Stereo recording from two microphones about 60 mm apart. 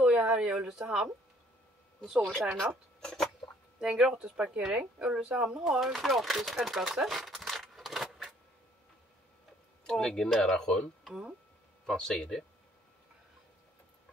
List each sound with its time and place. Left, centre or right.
0.0 s a sound: centre
2.5 s speech: centre
3.8 s speech: centre
9.8 s speech: centre
11.1 s speech: centre
11.8 s speech: centre